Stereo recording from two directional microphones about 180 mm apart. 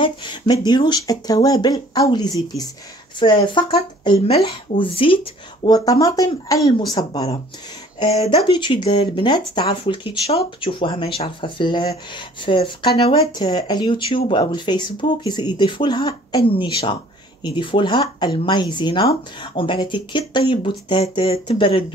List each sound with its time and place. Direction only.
0.0 s speech: 25° left (ahead or behind)